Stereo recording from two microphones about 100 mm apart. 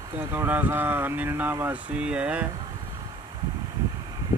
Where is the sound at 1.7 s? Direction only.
10° right (ahead or behind).